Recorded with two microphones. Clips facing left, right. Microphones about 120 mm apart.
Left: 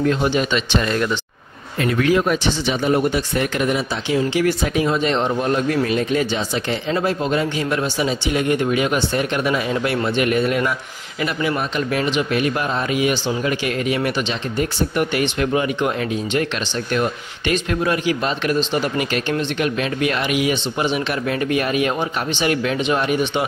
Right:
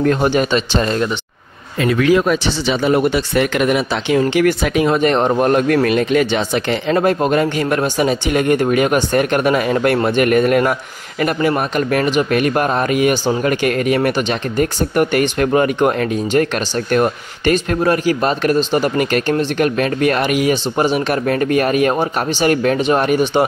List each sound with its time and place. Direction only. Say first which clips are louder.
0.0 s speech: right 4 dB; 50° right (ahead or behind); by 1.1 s 30° right (ahead or behind)
1.9 s speech: right 4 dB; 90° right; by 23.4 s 45° right (ahead or behind)